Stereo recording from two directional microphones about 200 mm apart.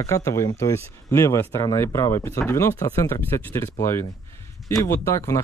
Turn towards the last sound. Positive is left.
turn(degrees=15)  # may be behind; listen again after turning